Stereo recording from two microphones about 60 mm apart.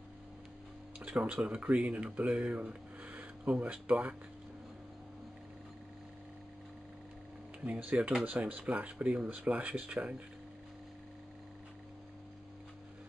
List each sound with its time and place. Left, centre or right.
1.0 s speech: right
3.0 s a sound: right
7.6 s speech: right